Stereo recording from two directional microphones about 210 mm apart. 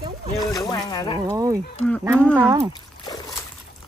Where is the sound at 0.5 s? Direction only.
20° left (ahead or behind).